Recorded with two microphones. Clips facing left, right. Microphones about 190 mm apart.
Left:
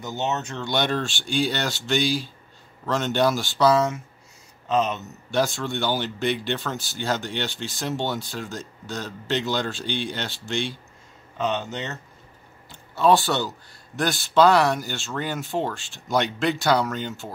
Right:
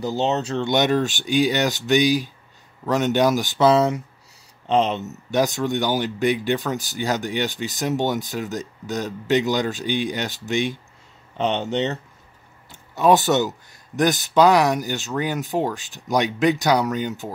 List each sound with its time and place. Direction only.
0.0 s speech: 35° right (ahead or behind)
0.7 s speech: 20° right (ahead or behind)
5.3 s speech: 15° right (ahead or behind)
11.3 s speech: 30° right (ahead or behind)
12.9 s speech: 20° right (ahead or behind)